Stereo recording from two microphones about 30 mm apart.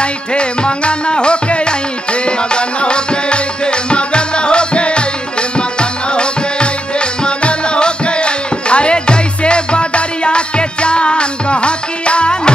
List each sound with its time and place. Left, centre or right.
0.0 s music: left